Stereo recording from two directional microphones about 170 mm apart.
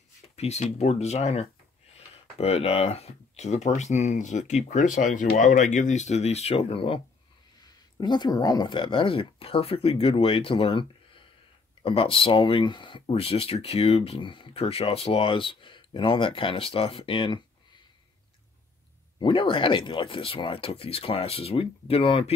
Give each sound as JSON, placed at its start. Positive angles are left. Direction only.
{"t": 0.4, "sound": "speech", "side_deg": 40}
{"t": 8.0, "sound": "speech", "side_deg": 25}
{"t": 19.1, "sound": "speech", "side_deg": 30}